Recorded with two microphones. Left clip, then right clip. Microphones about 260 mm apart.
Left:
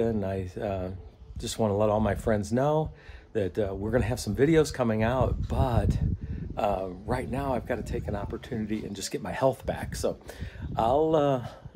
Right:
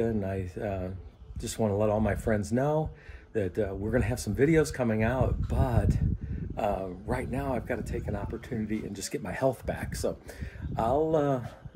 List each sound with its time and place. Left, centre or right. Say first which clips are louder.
0.0 s speech: left 2 dB; centre